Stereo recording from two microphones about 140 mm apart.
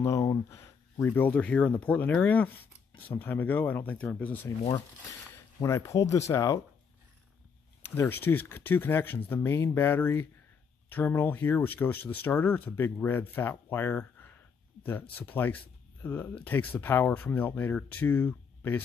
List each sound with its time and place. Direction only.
0.0 s speech: 20° left (ahead or behind)
5.6 s speech: 20° left (ahead or behind)
7.9 s speech: 15° left (ahead or behind)